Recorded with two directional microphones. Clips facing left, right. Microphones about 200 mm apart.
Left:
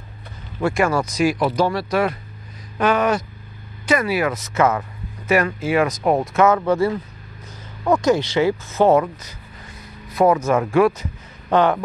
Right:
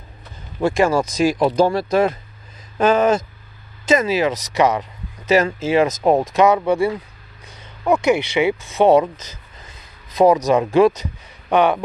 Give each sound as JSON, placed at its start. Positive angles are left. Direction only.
{"t": 0.6, "sound": "speech", "side_deg": -25}
{"t": 7.4, "sound": "a sound", "side_deg": -10}
{"t": 8.7, "sound": "speech", "side_deg": -15}